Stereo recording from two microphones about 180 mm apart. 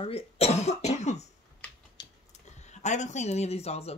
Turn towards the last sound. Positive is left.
turn(degrees=35)  # may be behind; listen again after turning